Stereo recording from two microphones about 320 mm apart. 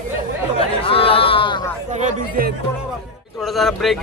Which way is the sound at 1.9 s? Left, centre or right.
Right.